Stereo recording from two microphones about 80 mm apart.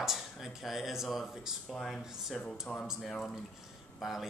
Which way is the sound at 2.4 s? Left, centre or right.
Centre.